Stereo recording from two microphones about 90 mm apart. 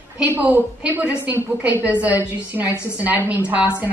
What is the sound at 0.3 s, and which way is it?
A woman's voice, 15° right (ahead or behind).